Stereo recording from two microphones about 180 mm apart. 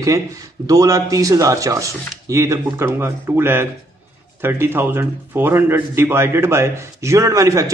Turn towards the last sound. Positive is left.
turn(degrees=-20)  # may be behind; listen again after turning